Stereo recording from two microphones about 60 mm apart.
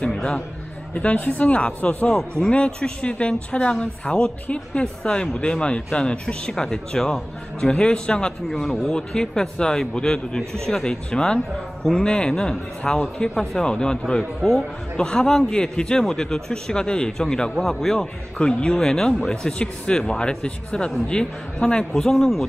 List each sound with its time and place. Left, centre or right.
0.0 s a man's voice: centre
11.3 s speech: centre
12.0 s speech: centre